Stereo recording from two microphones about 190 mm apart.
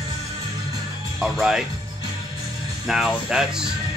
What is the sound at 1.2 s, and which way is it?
Speech, centre (ahead or behind).